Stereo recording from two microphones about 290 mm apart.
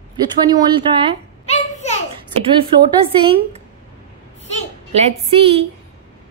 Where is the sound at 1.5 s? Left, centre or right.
Left.